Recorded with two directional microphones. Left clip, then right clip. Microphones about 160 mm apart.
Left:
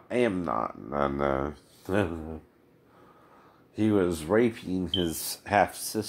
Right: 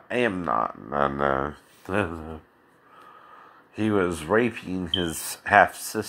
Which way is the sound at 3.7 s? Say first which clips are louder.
Right 1 dB; 10° right (ahead or behind).